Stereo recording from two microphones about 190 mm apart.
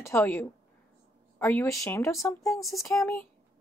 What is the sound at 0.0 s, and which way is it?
A woman's voice, 15° left (ahead or behind).